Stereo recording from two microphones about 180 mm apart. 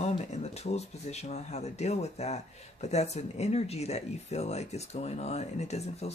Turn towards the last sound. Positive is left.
turn(degrees=35)  # may be behind; listen again after turning